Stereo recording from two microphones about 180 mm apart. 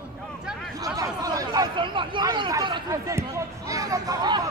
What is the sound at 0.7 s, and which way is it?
Speech, 20° right (ahead or behind).